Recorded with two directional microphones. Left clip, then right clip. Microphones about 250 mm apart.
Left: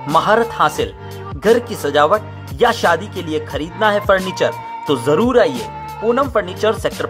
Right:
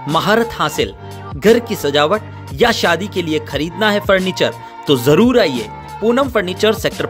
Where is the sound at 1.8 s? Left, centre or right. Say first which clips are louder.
Left 1 dB; right.